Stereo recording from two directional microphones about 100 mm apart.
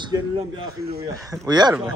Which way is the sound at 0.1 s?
35° right (ahead or behind).